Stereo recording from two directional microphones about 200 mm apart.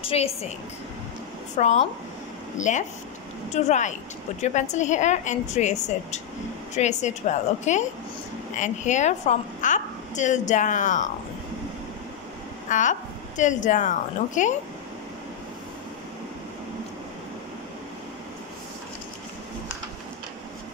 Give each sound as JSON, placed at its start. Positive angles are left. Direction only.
{"t": 0.0, "sound": "a woman's voice", "side_deg": 30}
{"t": 1.6, "sound": "a woman's voice", "side_deg": 35}
{"t": 6.8, "sound": "a woman's voice", "side_deg": 35}
{"t": 12.6, "sound": "a woman's voice", "side_deg": 40}